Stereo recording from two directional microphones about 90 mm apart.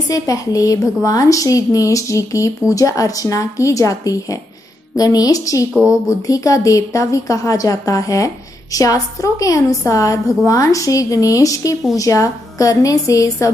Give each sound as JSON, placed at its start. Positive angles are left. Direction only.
{"t": 0.1, "sound": "a woman's voice", "side_deg": 40}
{"t": 5.7, "sound": "speech", "side_deg": -10}
{"t": 6.0, "sound": "a woman's voice", "side_deg": 40}